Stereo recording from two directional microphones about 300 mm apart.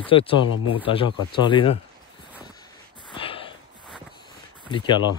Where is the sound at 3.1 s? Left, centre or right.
Centre.